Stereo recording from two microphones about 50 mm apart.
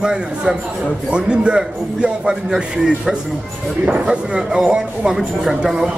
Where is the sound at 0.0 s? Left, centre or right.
Centre.